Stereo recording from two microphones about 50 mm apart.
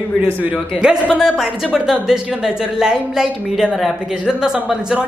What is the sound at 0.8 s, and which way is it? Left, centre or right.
Speech, centre.